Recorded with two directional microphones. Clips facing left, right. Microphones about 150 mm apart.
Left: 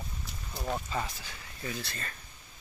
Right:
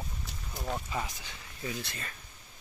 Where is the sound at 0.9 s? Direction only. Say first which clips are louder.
Left 1 dB; 15° right (ahead or behind).